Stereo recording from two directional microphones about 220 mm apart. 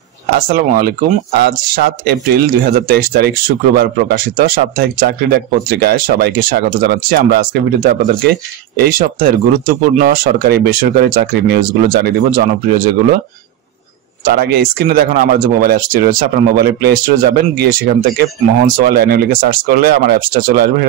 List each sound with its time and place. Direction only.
0.4 s speech: 40° right (ahead or behind)
14.2 s speech: 45° right (ahead or behind)